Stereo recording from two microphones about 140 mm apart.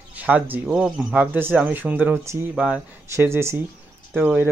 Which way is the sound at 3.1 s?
20° right (ahead or behind).